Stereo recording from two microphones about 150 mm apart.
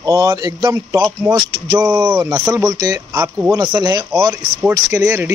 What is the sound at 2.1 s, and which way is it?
Speech, 25° right (ahead or behind).